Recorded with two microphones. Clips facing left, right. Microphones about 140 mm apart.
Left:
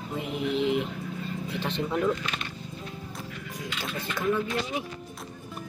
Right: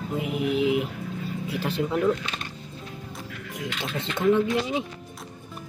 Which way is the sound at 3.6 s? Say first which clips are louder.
Right 4 dB; 25° right (ahead or behind).